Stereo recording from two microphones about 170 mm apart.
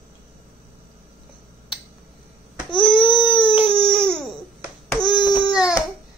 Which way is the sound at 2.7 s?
30° left (ahead or behind).